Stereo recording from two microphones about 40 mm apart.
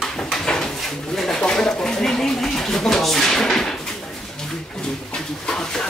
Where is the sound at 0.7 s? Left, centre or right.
Centre.